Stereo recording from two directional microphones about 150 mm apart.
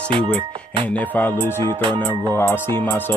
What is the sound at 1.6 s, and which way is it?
Music, 30° right (ahead or behind).